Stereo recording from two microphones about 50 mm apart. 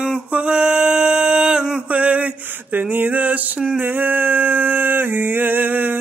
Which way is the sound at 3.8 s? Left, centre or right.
Right.